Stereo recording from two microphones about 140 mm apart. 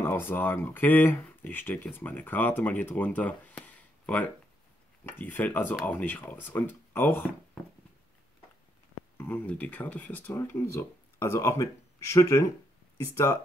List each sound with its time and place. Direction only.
0.0 s speech: 15° left (ahead or behind)
9.2 s speech: 10° left (ahead or behind)